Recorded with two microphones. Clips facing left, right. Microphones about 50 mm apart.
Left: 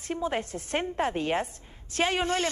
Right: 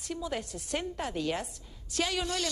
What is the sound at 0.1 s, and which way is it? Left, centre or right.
A woman's voice, left.